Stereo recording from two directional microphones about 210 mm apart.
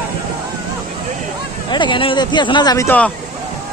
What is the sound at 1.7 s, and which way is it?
Speech, 20° left (ahead or behind).